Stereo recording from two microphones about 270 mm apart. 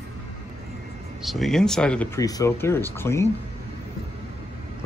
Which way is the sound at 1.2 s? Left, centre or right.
Centre.